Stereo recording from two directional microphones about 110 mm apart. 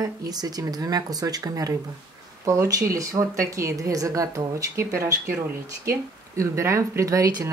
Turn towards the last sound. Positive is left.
turn(degrees=-30)  # may be behind; listen again after turning